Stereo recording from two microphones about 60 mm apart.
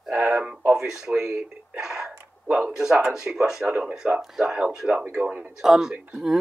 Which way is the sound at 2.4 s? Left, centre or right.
Right.